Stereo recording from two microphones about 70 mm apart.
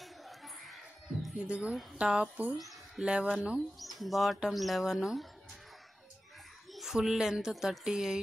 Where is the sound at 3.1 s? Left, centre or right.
Centre.